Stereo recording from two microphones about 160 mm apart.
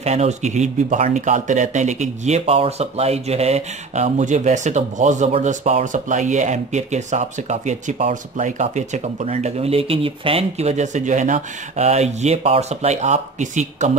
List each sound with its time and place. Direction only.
0.0 s speech: 45° right (ahead or behind)